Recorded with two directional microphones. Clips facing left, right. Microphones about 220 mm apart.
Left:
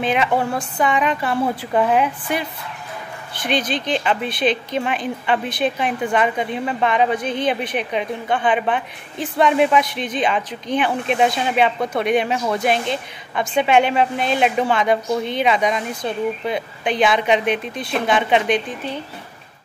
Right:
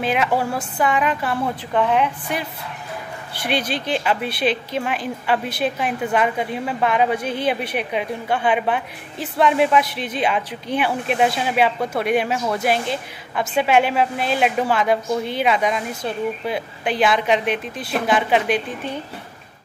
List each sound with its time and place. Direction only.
0.0 s a woman's voice: 5° right (ahead or behind)
3.4 s a woman's voice: 10° right (ahead or behind)